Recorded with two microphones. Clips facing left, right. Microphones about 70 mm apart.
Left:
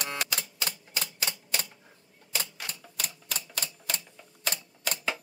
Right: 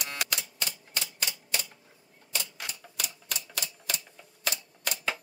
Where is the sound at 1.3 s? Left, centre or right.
Left.